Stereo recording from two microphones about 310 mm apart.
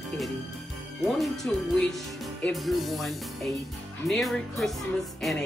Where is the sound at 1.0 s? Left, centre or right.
Centre.